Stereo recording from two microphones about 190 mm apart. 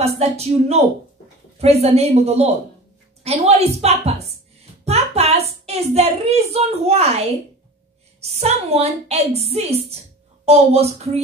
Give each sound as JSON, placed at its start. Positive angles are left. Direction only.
{"t": 0.0, "sound": "a woman's voice", "side_deg": -35}